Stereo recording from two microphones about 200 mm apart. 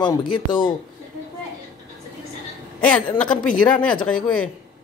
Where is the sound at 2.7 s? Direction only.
5° left (ahead or behind).